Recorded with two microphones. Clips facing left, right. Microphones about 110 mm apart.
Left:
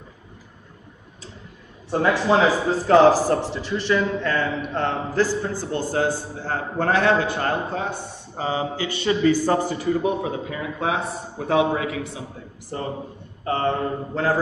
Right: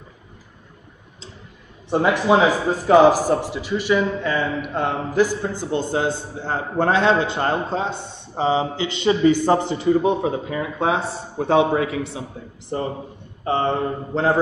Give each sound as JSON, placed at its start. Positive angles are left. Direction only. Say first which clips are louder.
{"t": 1.9, "sound": "a man's voice", "louder": "right 2 dB", "side_deg": -15}